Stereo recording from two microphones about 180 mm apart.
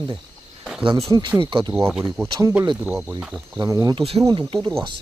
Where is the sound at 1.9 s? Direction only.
5° right (ahead or behind).